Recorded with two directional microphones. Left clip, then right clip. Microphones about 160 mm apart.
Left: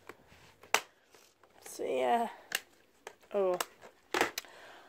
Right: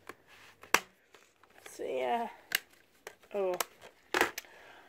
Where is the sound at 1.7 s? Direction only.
25° left (ahead or behind).